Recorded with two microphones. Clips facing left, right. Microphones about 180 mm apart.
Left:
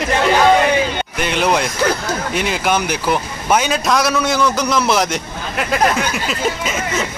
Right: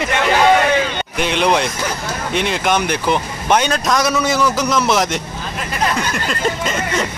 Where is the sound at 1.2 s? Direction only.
5° left (ahead or behind).